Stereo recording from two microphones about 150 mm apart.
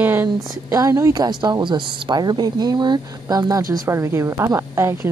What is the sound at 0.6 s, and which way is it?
A woman's voice, 20° right (ahead or behind).